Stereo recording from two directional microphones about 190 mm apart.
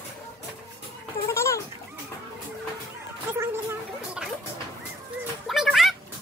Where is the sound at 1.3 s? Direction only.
15° left (ahead or behind).